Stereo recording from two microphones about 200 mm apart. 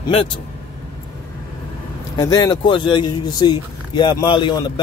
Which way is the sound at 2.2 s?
20° left (ahead or behind).